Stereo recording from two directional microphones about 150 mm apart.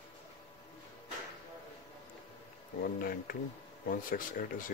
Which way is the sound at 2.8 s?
75° left (ahead or behind).